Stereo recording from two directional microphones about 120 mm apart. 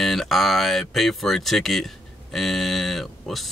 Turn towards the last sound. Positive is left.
turn(degrees=0)  # may be behind; listen again after turning